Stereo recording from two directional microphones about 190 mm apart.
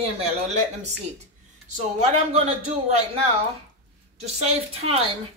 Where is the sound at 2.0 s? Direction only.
35° right (ahead or behind).